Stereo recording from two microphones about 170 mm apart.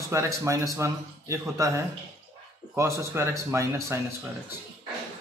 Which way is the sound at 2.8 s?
15° right (ahead or behind).